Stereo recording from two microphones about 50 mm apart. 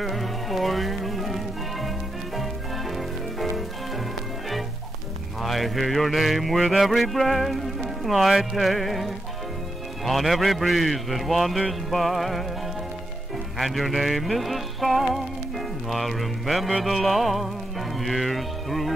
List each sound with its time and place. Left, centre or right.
0.0 s music: centre
5.4 s mantra: centre
13.6 s mantra: centre
15.9 s music: centre